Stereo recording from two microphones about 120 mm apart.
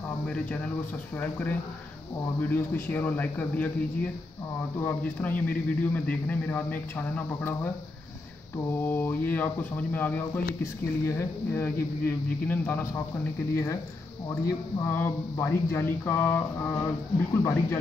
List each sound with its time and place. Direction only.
2.4 s speech: 15° left (ahead or behind)
14.4 s speech: 20° left (ahead or behind)